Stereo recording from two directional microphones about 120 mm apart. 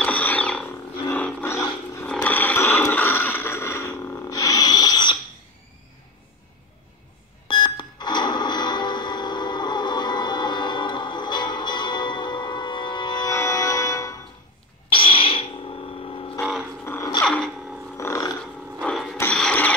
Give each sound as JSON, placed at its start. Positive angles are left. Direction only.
{"t": 0.0, "sound": "sewing machine", "side_deg": 10}
{"t": 1.1, "sound": "a sound", "side_deg": 15}
{"t": 7.4, "sound": "cash register", "side_deg": 40}
{"t": 13.3, "sound": "music", "side_deg": 25}
{"t": 14.9, "sound": "a sound", "side_deg": 50}
{"t": 16.8, "sound": "music", "side_deg": 20}
{"t": 17.2, "sound": "a sound", "side_deg": 5}
{"t": 17.9, "sound": "livestock", "side_deg": 25}
{"t": 18.8, "sound": "mechanisms", "side_deg": 5}
{"t": 19.3, "sound": "printer", "side_deg": 10}